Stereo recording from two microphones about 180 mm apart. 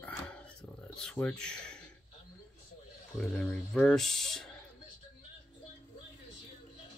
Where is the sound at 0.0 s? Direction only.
5° left (ahead or behind).